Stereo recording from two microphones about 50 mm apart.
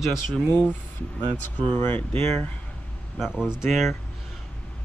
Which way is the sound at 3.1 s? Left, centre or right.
Centre.